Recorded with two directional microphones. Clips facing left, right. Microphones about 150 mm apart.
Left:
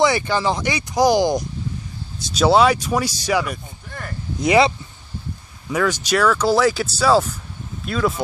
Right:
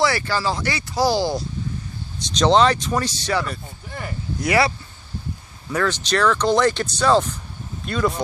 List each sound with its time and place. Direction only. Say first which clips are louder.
0.0 s speech: left 3 dB; 20° left (ahead or behind)
3.9 s speech: right 1 dB; 10° right (ahead or behind)
4.4 s speech: left 4 dB; 20° left (ahead or behind); by 8.1 s centre (ahead or behind)